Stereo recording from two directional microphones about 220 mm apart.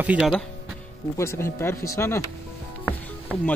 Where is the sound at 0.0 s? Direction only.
5° right (ahead or behind).